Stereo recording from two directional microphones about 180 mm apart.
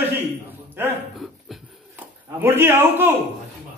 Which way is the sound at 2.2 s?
15° right (ahead or behind).